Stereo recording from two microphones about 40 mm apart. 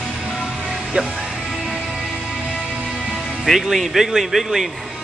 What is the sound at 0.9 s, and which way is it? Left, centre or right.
Speech, right.